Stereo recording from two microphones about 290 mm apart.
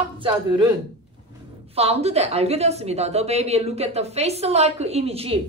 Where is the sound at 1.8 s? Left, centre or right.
Right.